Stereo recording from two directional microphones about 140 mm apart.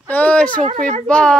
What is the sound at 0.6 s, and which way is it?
Speech, 55° right (ahead or behind).